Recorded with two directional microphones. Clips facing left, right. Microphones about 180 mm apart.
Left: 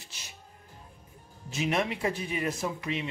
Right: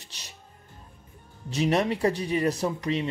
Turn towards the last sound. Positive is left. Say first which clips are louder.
# right 5 dB
turn(degrees=-35)  # may be behind; listen again after turning